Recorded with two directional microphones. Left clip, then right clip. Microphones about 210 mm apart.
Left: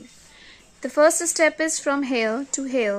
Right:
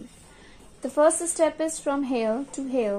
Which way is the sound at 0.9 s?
55° left (ahead or behind).